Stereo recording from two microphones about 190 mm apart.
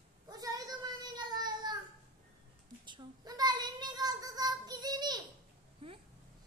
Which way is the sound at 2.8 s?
20° right (ahead or behind).